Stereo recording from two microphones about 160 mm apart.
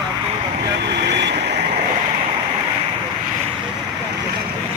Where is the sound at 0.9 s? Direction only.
90° right.